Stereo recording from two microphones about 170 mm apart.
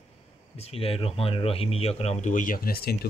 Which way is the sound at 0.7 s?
35° left (ahead or behind).